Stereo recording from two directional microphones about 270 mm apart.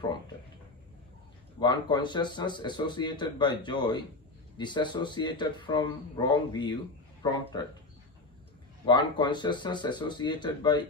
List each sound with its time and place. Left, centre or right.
1.6 s speech: centre
8.8 s speech: centre